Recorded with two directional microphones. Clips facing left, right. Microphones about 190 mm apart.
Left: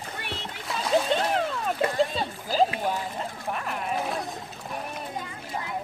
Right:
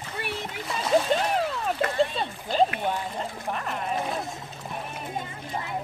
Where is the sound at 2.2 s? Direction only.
Centre (ahead or behind).